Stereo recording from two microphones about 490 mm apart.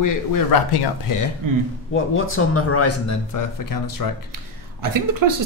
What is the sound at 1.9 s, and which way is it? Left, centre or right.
Speech, left.